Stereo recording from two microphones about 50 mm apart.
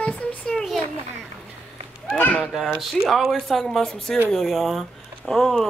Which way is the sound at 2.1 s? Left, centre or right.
Left.